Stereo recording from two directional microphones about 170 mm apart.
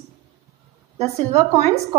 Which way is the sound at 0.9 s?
35° right (ahead or behind).